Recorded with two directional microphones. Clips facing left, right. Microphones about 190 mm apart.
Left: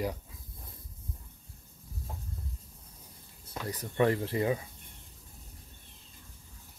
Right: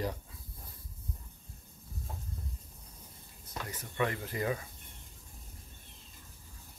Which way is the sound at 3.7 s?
35° left (ahead or behind).